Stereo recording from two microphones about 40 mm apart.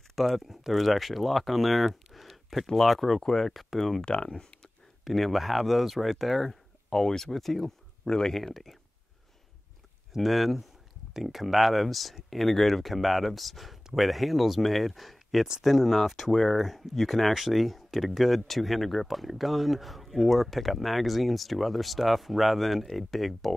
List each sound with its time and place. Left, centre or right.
0.1 s speech: centre
4.0 s speech: left
5.0 s speech: centre
10.1 s speech: centre